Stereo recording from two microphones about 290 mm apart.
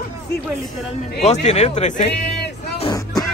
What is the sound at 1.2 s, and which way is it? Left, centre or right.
Music, left.